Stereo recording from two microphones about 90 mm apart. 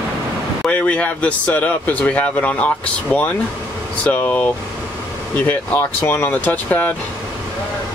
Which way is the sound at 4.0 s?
15° left (ahead or behind).